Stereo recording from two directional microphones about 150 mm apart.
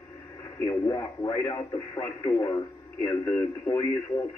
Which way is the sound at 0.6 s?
25° left (ahead or behind).